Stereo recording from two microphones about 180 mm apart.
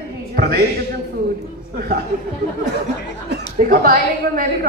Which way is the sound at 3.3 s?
50° right (ahead or behind).